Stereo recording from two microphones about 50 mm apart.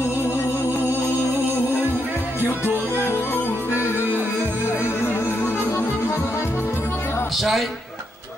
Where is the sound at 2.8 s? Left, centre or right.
Left.